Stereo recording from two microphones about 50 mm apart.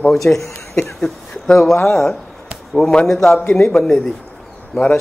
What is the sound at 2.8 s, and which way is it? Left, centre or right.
A man's voice, centre.